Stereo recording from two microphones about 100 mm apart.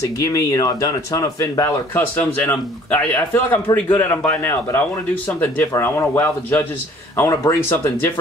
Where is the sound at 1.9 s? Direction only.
20° left (ahead or behind).